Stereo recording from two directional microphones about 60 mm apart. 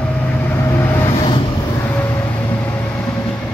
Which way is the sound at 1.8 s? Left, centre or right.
Left.